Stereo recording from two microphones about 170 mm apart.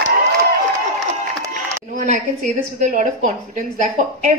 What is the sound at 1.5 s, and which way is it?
A woman's voice, 50° right (ahead or behind).